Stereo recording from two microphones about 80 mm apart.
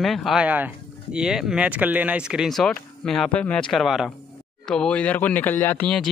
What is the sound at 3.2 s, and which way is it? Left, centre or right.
Speech, centre.